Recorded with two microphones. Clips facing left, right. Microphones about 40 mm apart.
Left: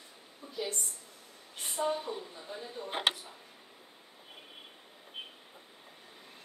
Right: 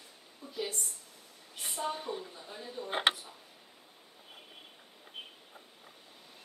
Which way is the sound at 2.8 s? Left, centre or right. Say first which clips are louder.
Right 2 dB; right.